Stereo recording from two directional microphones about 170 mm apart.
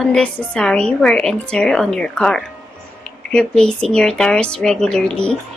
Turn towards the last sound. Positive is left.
turn(degrees=5)  # may be behind; listen again after turning